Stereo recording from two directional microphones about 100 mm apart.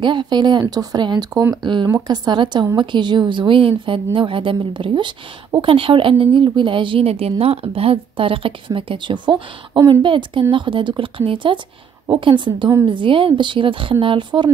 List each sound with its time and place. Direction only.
0.0 s a woman's voice: 50° right (ahead or behind)